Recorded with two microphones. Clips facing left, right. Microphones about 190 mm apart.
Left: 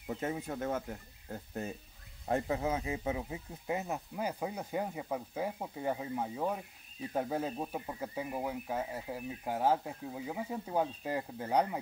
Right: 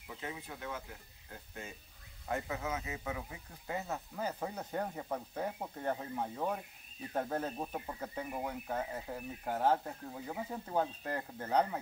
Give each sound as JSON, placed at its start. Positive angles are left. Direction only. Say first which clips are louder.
{"t": 0.1, "sound": "speech", "louder": "left 8 dB", "side_deg": 45}
{"t": 2.2, "sound": "speech", "louder": "left 5 dB", "side_deg": 35}